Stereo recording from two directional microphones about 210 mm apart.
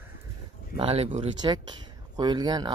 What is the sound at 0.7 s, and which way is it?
Speech, 25° right (ahead or behind).